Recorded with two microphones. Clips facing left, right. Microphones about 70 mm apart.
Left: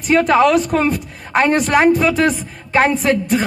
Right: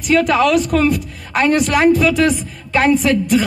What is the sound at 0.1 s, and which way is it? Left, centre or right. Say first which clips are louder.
A woman's voice: left 1 dB; left.